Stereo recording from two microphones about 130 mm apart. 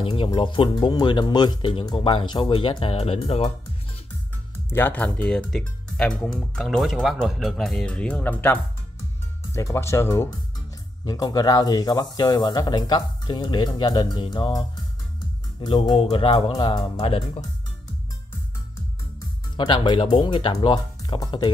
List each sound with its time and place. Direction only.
0.0 s speech: 40° left (ahead or behind)
4.6 s speech: 15° left (ahead or behind); by 14.5 s 40° left (ahead or behind)
15.6 s speech: 35° left (ahead or behind)
17.0 s speech: 50° left (ahead or behind)
19.5 s speech: 40° left (ahead or behind)